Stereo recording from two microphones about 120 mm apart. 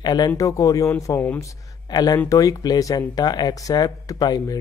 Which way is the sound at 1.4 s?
35° left (ahead or behind).